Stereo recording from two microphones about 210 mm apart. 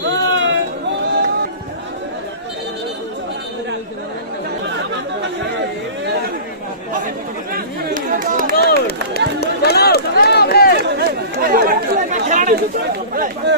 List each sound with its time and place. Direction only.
0.0 s a sound: 60° right (ahead or behind)
7.5 s chatter: 40° right (ahead or behind)
8.5 s run: 50° left (ahead or behind)
11.0 s chatter: 45° right (ahead or behind)